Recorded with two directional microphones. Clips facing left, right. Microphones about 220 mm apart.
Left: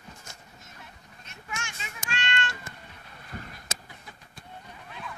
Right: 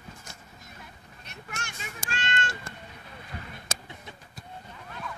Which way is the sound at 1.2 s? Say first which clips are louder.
Left 1 dB; 65° right (ahead or behind).